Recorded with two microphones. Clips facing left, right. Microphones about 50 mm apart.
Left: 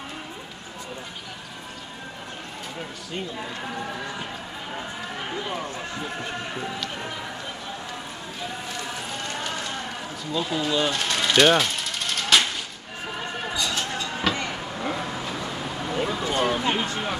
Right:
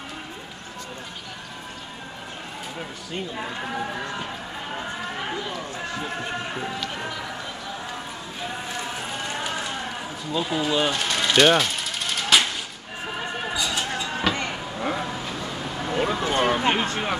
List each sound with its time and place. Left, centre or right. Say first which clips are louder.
5.4 s speech: left 1 dB; centre
8.6 s clip-clop: right 2 dB; right
10.3 s speech: right 1 dB; centre
10.9 s vehicle: right 1 dB; centre
13.4 s a sound: even; centre
15.4 s vehicle: even; centre
15.9 s a sound: right 3 dB; right